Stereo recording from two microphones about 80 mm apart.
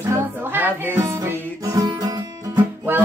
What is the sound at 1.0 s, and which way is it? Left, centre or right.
Music, right.